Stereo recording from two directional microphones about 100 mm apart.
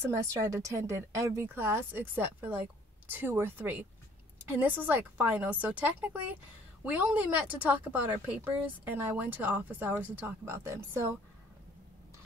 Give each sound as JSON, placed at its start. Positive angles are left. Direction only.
{"t": 0.1, "sound": "speech", "side_deg": -30}